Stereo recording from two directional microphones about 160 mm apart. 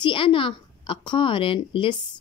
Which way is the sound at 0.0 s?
35° left (ahead or behind).